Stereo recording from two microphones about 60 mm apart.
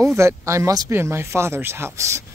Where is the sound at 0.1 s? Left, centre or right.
Right.